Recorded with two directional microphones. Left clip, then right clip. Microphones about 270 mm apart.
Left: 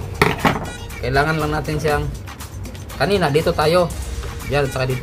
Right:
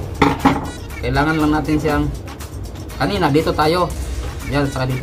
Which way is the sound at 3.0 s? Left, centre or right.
Centre.